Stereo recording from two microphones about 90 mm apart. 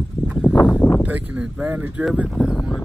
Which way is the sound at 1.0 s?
15° right (ahead or behind).